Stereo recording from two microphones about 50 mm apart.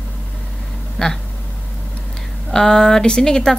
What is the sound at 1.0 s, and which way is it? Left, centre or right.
Speech, centre.